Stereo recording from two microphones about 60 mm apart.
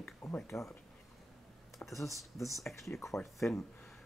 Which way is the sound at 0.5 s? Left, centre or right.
Left.